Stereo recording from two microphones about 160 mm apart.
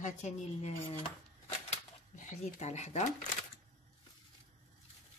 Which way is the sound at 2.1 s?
50° left (ahead or behind).